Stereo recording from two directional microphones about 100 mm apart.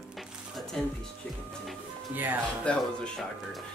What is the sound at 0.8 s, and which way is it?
Speech, 5° left (ahead or behind).